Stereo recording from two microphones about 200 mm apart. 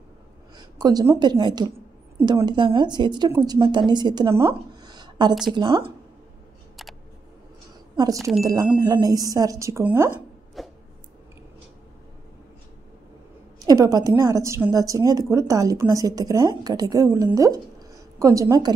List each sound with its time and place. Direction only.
0.6 s a woman's voice: 20° right (ahead or behind)
4.5 s a sound: 20° right (ahead or behind)
5.5 s a woman's voice: 25° right (ahead or behind)
7.9 s speech: 20° right (ahead or behind)
8.2 s speech: centre (ahead or behind)
8.8 s a woman's voice: 20° right (ahead or behind)
10.6 s a sound: centre (ahead or behind)
13.7 s a woman's voice: 20° right (ahead or behind)